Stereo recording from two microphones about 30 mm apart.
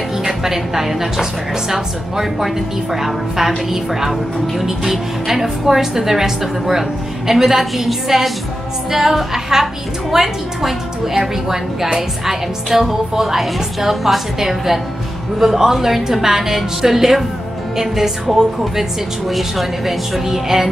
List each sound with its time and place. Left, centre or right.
0.2 s a woman's voice: centre
2.4 s a woman's voice: centre
20.2 s a woman's voice: centre